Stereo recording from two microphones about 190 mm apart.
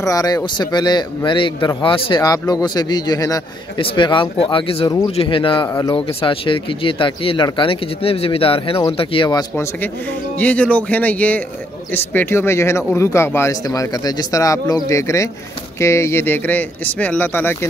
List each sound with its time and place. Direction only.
0.0 s speech: 15° left (ahead or behind)
10.4 s speech: 5° left (ahead or behind)